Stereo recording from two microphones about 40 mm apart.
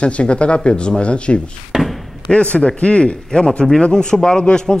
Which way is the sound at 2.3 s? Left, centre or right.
Left.